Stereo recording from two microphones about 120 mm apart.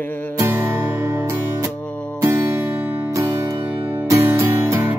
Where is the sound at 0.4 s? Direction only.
20° right (ahead or behind).